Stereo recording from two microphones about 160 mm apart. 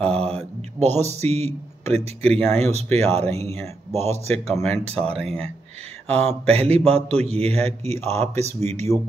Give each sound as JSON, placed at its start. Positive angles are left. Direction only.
{"t": 0.1, "sound": "speech", "side_deg": -40}